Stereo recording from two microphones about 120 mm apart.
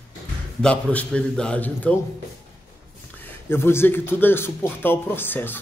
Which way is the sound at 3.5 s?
20° left (ahead or behind).